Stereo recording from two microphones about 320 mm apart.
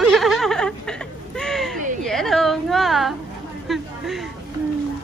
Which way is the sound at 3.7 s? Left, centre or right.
Centre.